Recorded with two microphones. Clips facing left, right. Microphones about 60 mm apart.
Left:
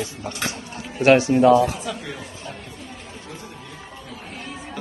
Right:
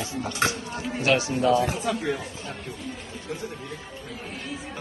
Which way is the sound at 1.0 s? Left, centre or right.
Left.